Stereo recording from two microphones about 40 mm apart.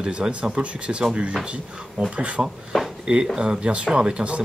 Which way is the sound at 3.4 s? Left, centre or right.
Right.